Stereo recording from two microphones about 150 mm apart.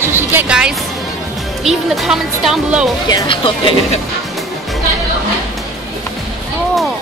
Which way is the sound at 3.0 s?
30° left (ahead or behind).